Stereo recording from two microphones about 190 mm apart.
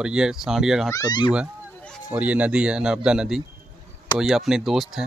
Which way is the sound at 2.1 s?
10° right (ahead or behind).